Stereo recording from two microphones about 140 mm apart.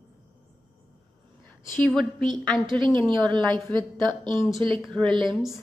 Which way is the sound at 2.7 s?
35° right (ahead or behind).